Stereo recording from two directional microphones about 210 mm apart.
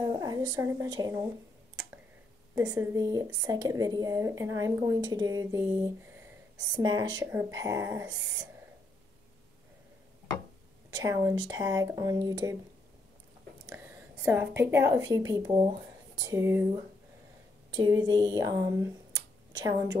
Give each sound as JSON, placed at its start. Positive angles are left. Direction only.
{"t": 0.0, "sound": "a woman's voice", "side_deg": -20}
{"t": 2.5, "sound": "a woman's voice", "side_deg": -15}
{"t": 10.9, "sound": "a woman's voice", "side_deg": -15}
{"t": 13.7, "sound": "a sound", "side_deg": -10}
{"t": 14.6, "sound": "a woman's voice", "side_deg": -10}
{"t": 17.7, "sound": "a woman's voice", "side_deg": -20}